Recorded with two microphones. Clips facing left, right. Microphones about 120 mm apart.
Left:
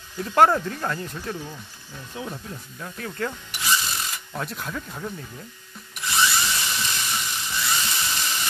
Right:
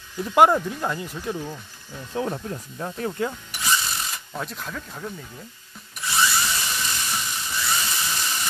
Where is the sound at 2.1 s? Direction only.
40° right (ahead or behind).